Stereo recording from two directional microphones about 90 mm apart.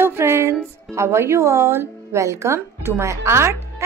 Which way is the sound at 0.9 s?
30° right (ahead or behind).